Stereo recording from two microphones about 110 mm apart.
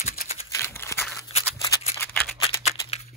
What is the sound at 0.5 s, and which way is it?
Crumpling, 20° left (ahead or behind).